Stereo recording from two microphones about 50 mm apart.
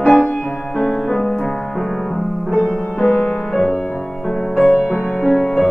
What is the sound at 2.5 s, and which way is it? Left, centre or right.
Music, left.